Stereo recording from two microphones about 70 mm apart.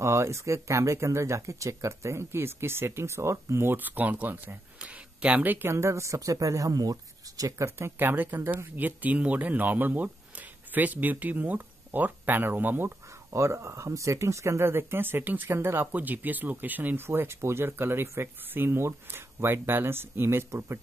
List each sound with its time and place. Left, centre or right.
0.0 s speech: right
3.7 s speech: right
5.7 s speech: right
8.0 s speech: right
13.3 s speech: right